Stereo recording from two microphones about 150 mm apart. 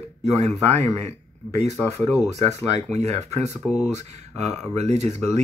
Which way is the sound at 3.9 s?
50° right (ahead or behind).